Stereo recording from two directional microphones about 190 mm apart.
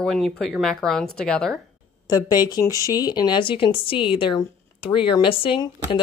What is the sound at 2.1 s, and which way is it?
Speech, 20° left (ahead or behind).